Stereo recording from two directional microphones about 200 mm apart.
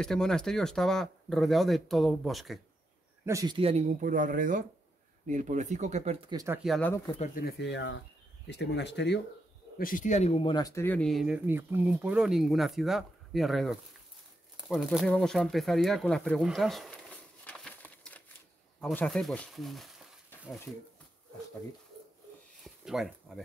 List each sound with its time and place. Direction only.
0.0 s speech: centre (ahead or behind)
3.3 s speech: 20° right (ahead or behind); by 6.3 s 35° right (ahead or behind)
6.3 s speech: 15° right (ahead or behind)
6.6 s speech: centre (ahead or behind)
7.2 s speech: 40° left (ahead or behind); by 9.2 s 60° left (ahead or behind)
9.8 s speech: 45° left (ahead or behind); by 20.1 s centre (ahead or behind)
22.6 s a sound: centre (ahead or behind)